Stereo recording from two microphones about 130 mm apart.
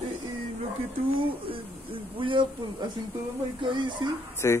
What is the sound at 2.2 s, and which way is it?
A man's voice, 40° right (ahead or behind).